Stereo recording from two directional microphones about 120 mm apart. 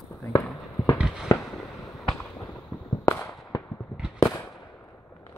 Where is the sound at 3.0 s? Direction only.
25° left (ahead or behind).